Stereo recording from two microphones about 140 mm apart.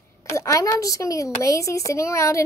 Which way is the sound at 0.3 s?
20° left (ahead or behind).